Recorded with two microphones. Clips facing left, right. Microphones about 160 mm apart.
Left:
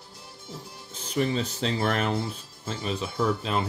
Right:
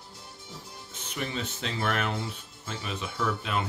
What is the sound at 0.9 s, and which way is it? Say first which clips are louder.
Speech: left 8 dB; 35° left (ahead or behind).